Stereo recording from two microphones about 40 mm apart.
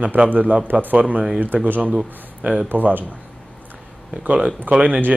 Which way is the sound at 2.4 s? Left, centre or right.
Centre.